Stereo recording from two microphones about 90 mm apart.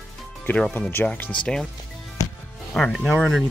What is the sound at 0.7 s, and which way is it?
Speech, 20° left (ahead or behind).